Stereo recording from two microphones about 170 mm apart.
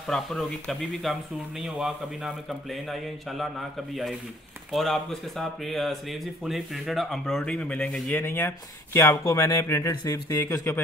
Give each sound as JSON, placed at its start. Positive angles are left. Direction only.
{"t": 0.0, "sound": "a man's voice", "side_deg": 0}
{"t": 4.7, "sound": "speech", "side_deg": 0}